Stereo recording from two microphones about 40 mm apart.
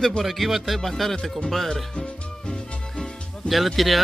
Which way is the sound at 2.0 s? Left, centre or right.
Left.